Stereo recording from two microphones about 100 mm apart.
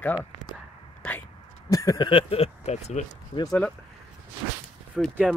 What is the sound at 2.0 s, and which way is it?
Speech, 65° left (ahead or behind).